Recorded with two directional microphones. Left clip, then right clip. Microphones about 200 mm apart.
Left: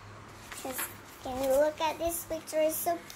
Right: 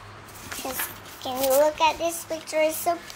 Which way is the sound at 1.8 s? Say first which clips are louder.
Right 9 dB; 5° right (ahead or behind).